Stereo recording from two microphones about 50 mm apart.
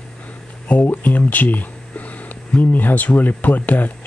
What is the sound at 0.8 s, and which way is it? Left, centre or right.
Speech, left.